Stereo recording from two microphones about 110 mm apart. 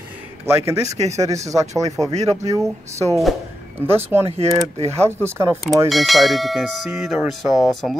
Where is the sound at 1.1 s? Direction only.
30° right (ahead or behind).